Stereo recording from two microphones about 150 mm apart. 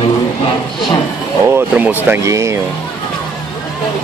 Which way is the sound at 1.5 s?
15° right (ahead or behind).